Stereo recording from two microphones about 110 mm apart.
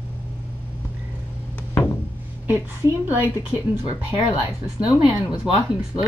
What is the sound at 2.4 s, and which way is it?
A woman's voice, 20° right (ahead or behind).